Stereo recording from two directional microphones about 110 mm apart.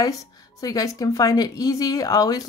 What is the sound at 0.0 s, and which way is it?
A woman's voice, 35° left (ahead or behind).